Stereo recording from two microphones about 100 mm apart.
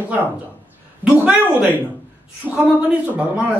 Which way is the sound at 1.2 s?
15° right (ahead or behind).